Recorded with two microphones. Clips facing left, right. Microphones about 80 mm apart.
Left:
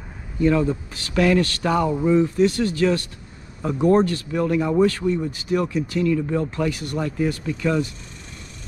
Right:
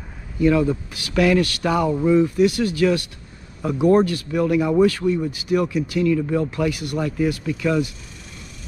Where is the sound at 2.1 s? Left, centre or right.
Centre.